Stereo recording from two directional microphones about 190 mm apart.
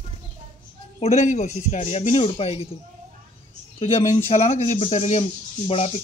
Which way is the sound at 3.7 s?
30° left (ahead or behind).